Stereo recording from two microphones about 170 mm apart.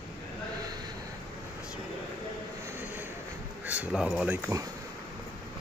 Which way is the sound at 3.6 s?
5° right (ahead or behind).